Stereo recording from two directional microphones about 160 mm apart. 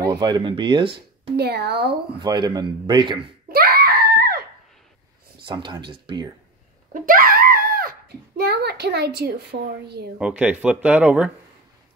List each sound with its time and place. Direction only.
0.0 s speech: 25° right (ahead or behind)
1.3 s a woman's voice: 90° right
2.1 s speech: 25° right (ahead or behind)
3.5 s screaming: 75° right (ahead or behind)
5.4 s speech: 30° right (ahead or behind)
6.9 s screaming: 60° right (ahead or behind)
8.4 s a woman's voice: 85° right
10.1 s speech: 10° right (ahead or behind)